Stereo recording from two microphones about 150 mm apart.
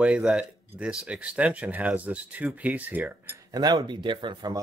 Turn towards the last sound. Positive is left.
turn(degrees=-30)  # may be behind; listen again after turning